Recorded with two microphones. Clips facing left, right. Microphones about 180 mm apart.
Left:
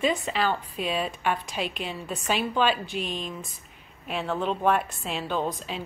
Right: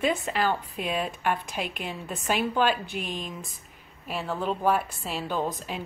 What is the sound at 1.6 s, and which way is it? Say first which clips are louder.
Speech: left 2 dB; 55° right (ahead or behind).